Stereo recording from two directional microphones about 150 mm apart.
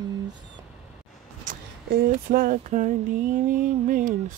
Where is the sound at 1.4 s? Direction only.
65° right (ahead or behind).